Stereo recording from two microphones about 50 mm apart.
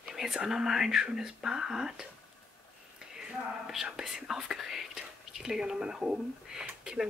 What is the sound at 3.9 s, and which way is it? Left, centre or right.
Speech, centre.